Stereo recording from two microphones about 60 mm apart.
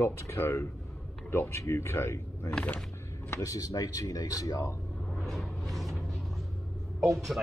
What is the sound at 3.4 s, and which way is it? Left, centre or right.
Speech, left.